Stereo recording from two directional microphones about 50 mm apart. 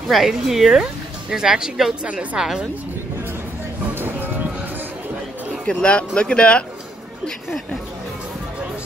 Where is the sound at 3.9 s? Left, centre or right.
Right.